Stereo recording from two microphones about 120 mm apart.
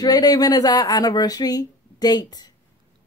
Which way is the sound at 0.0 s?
30° left (ahead or behind).